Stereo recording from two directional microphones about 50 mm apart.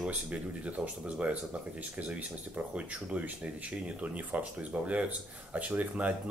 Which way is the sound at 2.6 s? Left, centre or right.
Right.